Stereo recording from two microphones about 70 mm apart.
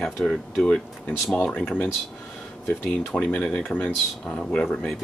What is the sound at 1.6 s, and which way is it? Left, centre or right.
Speech, centre.